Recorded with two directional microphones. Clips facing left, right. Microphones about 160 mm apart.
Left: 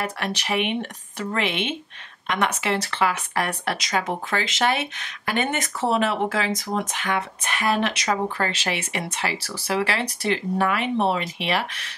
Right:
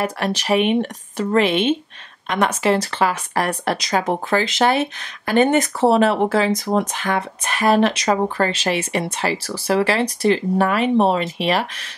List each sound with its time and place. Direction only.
0.2 s speech: 40° right (ahead or behind)